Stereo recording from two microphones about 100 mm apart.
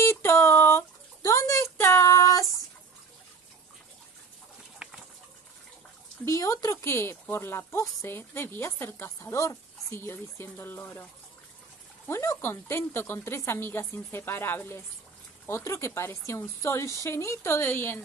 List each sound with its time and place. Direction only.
0.0 s a sound: 25° left (ahead or behind)
4.8 s bird: 10° right (ahead or behind)
6.2 s speech: 35° left (ahead or behind)
12.1 s speech: 25° left (ahead or behind)